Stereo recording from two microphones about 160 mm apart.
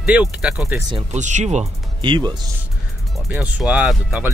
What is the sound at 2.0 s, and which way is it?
Speech, 30° right (ahead or behind).